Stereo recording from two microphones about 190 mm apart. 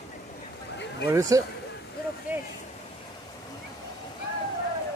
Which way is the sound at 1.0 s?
20° right (ahead or behind).